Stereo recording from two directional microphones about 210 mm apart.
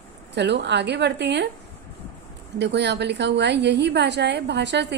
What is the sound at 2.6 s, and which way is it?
A woman's voice, 55° right (ahead or behind).